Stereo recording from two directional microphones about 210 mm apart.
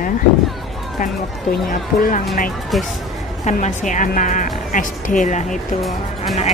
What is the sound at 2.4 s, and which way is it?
Speech, centre (ahead or behind).